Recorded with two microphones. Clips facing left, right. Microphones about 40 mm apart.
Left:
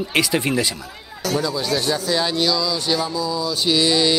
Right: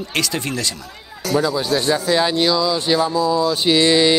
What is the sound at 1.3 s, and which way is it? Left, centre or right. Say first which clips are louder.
Speech: right 4 dB; right.